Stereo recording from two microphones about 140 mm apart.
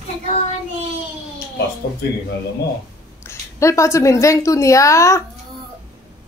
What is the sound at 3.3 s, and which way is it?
A woman's voice, 20° left (ahead or behind).